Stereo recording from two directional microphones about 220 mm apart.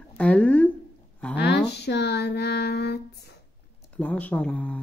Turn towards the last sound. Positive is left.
turn(degrees=5)  # may be behind; listen again after turning